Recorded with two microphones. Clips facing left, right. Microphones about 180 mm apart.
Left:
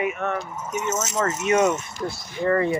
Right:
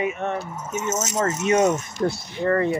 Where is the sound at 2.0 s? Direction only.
55° right (ahead or behind).